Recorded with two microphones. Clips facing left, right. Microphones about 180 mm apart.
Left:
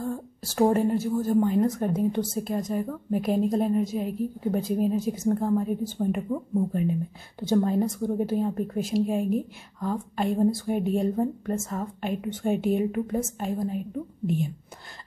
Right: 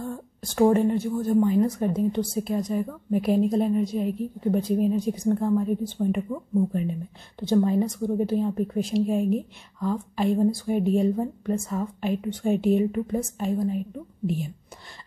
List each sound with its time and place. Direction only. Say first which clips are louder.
0.0 s a woman's voice: left 2 dB; 5° left (ahead or behind)